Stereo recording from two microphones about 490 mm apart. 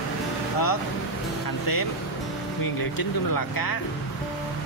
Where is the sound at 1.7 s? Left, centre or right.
Left.